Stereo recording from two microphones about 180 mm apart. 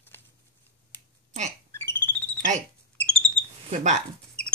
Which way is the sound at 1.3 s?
40° right (ahead or behind).